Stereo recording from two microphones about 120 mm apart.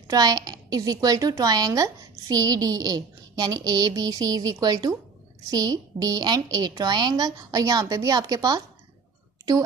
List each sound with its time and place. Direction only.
0.1 s a woman's voice: 30° right (ahead or behind)